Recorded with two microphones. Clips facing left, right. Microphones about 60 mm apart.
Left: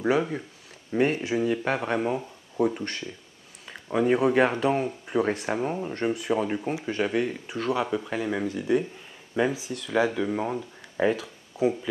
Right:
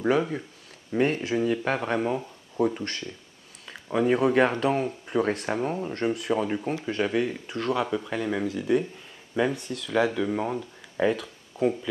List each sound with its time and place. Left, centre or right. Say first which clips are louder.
0.0 s speech: even; centre